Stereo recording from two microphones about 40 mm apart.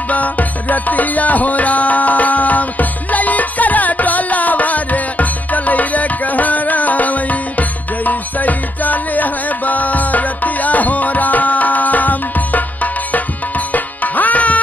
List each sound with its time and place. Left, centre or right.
0.1 s music: left